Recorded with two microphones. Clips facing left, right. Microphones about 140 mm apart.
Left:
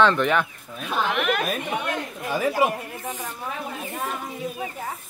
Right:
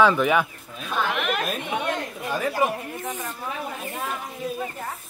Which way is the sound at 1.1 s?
Centre (ahead or behind).